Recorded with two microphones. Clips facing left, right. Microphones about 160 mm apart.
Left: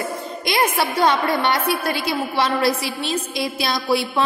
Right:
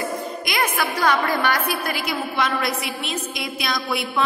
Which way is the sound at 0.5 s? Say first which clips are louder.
Left 4 dB; 30° left (ahead or behind).